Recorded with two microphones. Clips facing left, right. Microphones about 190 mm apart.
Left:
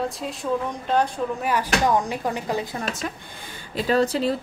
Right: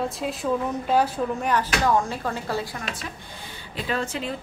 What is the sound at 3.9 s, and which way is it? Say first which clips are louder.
Speech: left 8 dB; 35° left (ahead or behind).